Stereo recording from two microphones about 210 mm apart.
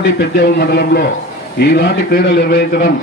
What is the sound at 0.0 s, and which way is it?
Speech, 55° left (ahead or behind).